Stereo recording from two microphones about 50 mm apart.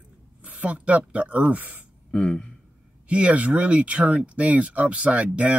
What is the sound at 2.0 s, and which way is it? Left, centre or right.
Speech, centre.